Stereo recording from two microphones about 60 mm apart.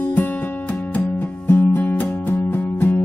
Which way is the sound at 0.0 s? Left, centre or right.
Left.